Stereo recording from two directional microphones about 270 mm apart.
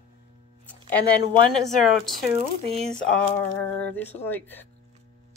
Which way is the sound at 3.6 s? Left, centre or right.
Centre.